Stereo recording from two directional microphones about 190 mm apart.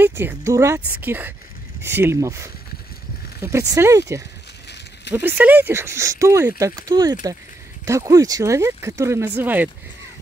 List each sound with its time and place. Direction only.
0.0 s speech: 10° right (ahead or behind)